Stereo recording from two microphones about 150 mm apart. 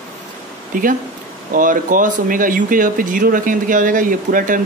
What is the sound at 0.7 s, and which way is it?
Speech, 65° right (ahead or behind).